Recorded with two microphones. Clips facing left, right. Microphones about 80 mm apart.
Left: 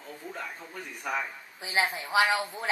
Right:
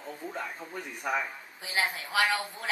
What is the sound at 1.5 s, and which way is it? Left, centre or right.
A woman's voice, left.